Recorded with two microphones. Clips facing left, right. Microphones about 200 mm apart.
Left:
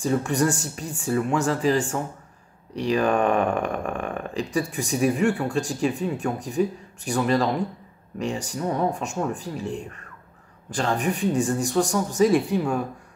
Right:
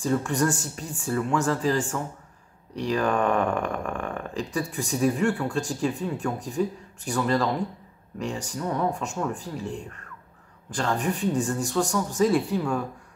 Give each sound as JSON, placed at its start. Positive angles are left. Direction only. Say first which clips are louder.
{"t": 0.0, "sound": "speech", "louder": "left 2 dB", "side_deg": 15}